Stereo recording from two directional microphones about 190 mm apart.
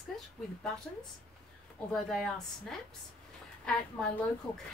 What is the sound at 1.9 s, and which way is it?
A woman's voice, centre (ahead or behind).